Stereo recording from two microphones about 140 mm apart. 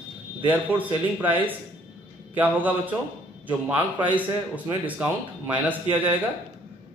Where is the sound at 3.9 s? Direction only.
35° right (ahead or behind).